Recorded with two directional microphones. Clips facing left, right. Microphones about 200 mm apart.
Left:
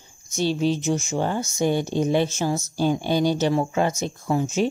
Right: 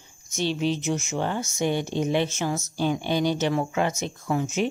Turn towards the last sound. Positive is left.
turn(degrees=30)  # may be behind; listen again after turning